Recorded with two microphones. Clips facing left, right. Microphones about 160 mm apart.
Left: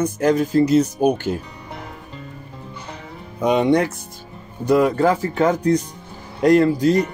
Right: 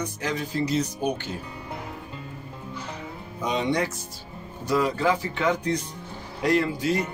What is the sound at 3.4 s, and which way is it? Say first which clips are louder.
Speech: left 9 dB; 60° left (ahead or behind).